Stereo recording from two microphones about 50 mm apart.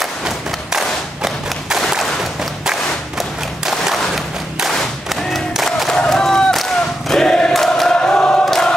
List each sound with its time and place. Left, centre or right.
0.7 s thump: centre
1.8 s a sound: centre
4.7 s thump: centre
6.0 s a sound: centre
7.5 s choir: centre
8.0 s choir: centre
8.5 s choir: centre